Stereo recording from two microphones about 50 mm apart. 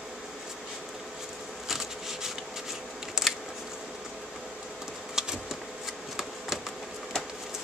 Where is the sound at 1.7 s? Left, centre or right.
Centre.